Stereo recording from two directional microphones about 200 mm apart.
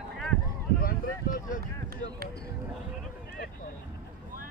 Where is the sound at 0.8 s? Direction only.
40° left (ahead or behind).